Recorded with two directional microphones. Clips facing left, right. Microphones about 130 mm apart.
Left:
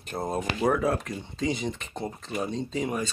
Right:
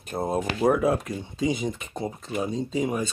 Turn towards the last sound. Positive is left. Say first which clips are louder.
# right 3 dB
turn(degrees=-5)  # may be behind; listen again after turning